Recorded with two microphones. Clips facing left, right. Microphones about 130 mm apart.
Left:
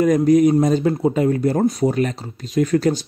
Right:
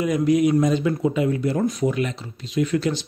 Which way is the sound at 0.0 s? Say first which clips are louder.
Left 5 dB; 45° left (ahead or behind).